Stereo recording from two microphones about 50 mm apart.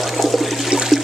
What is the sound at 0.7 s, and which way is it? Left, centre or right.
Toilet flush, centre.